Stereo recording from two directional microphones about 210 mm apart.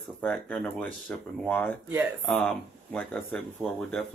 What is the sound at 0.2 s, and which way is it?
Speech, 5° left (ahead or behind).